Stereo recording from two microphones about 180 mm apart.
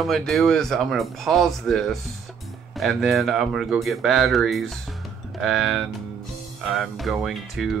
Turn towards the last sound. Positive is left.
turn(degrees=0)  # may be behind; listen again after turning